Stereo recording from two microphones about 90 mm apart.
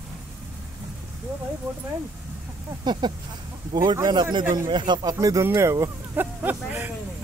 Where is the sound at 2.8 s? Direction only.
55° right (ahead or behind).